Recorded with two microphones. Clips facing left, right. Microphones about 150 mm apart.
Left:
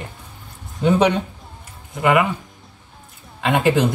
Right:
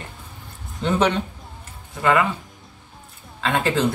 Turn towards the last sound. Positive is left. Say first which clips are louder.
# left 4 dB
turn(degrees=15)  # may be behind; listen again after turning